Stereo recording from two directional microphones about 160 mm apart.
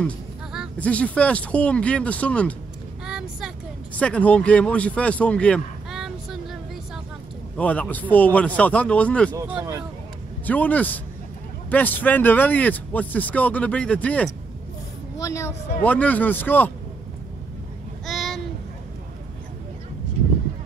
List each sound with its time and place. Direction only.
0.7 s speech: 10° left (ahead or behind)
3.1 s vehicle: 5° right (ahead or behind)
4.0 s speech: 10° left (ahead or behind)
10.4 s a woman's voice: 10° left (ahead or behind)
18.0 s child singing: centre (ahead or behind)